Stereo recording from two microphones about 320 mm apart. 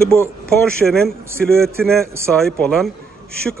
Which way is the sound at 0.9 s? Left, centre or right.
Centre.